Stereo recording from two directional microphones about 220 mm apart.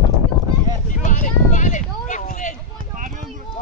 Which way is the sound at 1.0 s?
35° left (ahead or behind).